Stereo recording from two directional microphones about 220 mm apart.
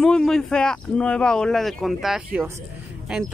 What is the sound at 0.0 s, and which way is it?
Speech, centre (ahead or behind).